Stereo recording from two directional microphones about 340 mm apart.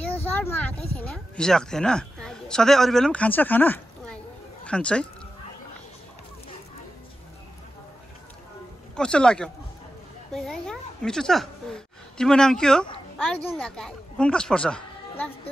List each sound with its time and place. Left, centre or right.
0.4 s a sound: centre
0.9 s a woman's voice: centre
8.9 s a woman's voice: centre